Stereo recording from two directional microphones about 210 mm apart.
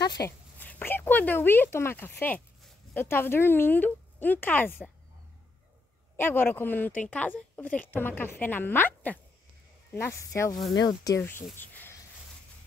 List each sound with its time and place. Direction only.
0.2 s speech: 10° left (ahead or behind)
6.1 s a woman's voice: 10° left (ahead or behind)